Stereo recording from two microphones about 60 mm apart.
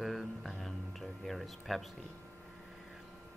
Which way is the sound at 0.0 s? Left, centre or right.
Centre.